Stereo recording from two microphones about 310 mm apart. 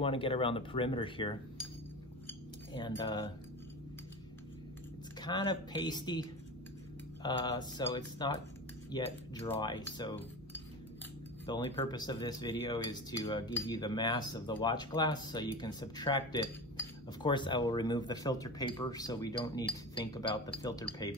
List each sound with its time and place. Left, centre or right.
0.0 s speech: centre
2.2 s cutlery: centre
5.2 s speech: centre
7.2 s speech: centre